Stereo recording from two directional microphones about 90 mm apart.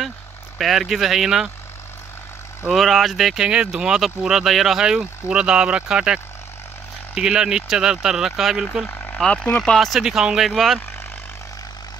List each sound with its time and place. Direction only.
0.6 s speech: centre (ahead or behind)
2.7 s speech: centre (ahead or behind)
8.8 s a sound: 25° left (ahead or behind)
9.2 s speech: 15° left (ahead or behind)
9.6 s speech: 5° left (ahead or behind)